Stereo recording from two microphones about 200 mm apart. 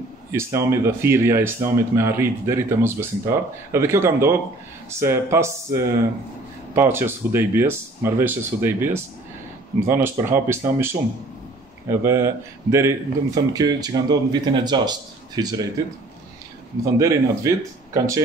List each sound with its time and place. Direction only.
0.3 s speech: 15° right (ahead or behind)
17.0 s speech: 15° right (ahead or behind)